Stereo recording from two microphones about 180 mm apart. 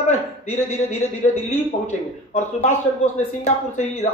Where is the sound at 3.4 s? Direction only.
40° left (ahead or behind).